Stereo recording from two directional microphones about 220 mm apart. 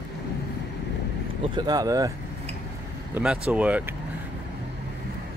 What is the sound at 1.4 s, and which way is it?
Speech, 20° right (ahead or behind).